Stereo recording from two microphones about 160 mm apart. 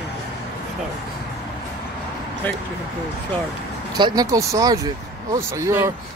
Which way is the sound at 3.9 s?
25° right (ahead or behind).